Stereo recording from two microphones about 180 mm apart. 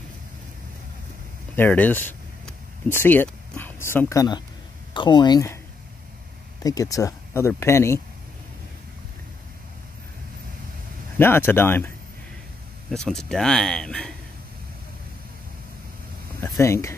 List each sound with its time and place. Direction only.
1.5 s a sound: 10° left (ahead or behind)
4.9 s speech: 25° left (ahead or behind)
6.6 s speech: 20° left (ahead or behind)
11.1 s speech: 10° left (ahead or behind)
12.9 s speech: 5° left (ahead or behind)
16.5 s speech: 15° left (ahead or behind)